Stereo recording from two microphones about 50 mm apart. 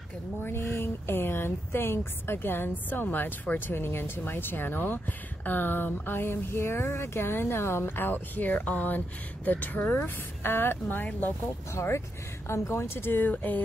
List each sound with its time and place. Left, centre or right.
0.5 s speech: left
11.7 s speech: left
12.4 s speech: left